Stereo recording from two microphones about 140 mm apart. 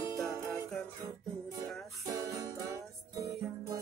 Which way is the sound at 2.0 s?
25° right (ahead or behind).